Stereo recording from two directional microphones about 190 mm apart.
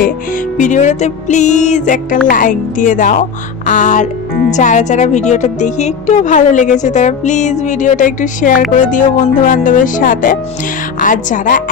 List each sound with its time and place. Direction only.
0.6 s speech: 40° left (ahead or behind)